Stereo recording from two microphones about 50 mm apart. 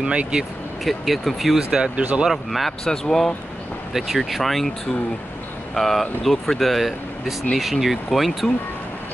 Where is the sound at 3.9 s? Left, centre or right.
Centre.